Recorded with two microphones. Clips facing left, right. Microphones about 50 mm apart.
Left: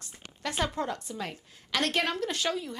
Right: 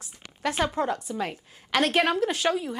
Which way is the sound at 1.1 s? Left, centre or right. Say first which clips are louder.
Right 6 dB; centre.